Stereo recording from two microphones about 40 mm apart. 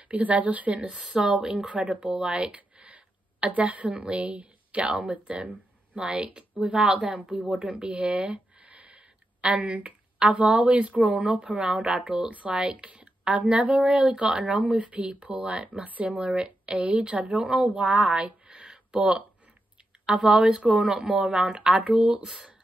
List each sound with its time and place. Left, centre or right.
0.1 s a woman's voice: right
1.1 s speech: centre
1.8 s speech: right
2.5 s a sound: right
3.4 s a woman's voice: right
8.5 s a sound: right
9.8 s a woman's voice: right
12.3 s a woman's voice: right
15.8 s a woman's voice: right
18.7 s a sound: right
20.2 s a woman's voice: right